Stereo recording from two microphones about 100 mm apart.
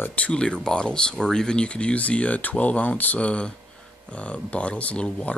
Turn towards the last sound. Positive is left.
turn(degrees=10)  # may be behind; listen again after turning